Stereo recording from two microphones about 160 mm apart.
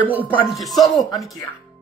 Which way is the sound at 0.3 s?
Centre (ahead or behind).